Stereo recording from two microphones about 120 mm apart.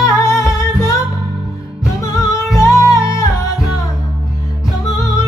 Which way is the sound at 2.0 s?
25° left (ahead or behind).